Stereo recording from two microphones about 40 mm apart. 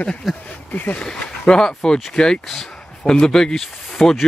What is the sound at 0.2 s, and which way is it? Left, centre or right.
Speech, centre.